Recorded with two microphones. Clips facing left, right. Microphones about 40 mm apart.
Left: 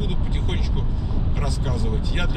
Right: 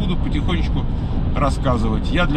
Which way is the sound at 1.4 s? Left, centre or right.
Right.